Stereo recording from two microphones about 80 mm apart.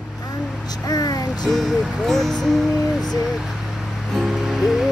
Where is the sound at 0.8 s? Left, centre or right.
Left.